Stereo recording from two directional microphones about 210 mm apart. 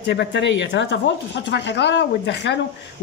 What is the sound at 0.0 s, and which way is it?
Speech, 55° left (ahead or behind).